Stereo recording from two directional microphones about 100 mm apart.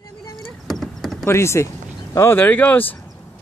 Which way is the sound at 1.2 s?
25° left (ahead or behind).